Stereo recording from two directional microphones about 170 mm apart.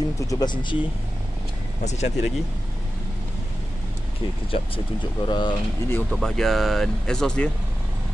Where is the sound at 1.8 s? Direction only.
40° left (ahead or behind).